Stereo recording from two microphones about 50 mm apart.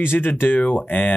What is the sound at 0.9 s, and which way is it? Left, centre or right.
Speech, left.